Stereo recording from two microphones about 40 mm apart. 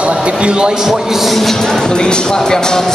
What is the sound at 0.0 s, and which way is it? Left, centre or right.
A man's voice, right.